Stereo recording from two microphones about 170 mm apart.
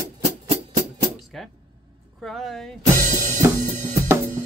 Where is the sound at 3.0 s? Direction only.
50° right (ahead or behind).